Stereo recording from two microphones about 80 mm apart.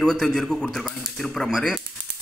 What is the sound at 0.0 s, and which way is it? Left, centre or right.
A man's voice, centre.